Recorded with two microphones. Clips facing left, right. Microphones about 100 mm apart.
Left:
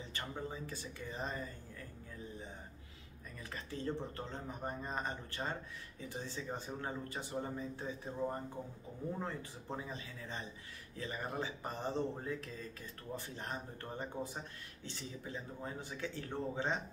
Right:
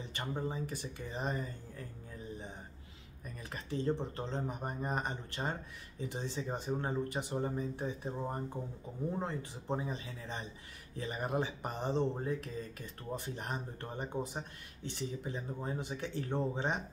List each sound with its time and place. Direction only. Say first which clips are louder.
0.1 s speech: right 6 dB; 20° right (ahead or behind)
3.5 s speech: right 6 dB; 20° right (ahead or behind)